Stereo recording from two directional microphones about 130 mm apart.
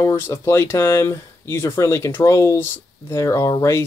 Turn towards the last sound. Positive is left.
turn(degrees=20)  # may be behind; listen again after turning